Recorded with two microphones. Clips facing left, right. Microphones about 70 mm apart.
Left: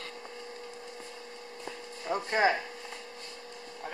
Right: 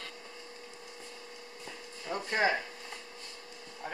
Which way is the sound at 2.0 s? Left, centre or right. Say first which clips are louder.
Left 3 dB; centre.